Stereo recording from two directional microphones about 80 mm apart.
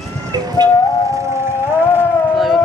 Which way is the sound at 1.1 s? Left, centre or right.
Right.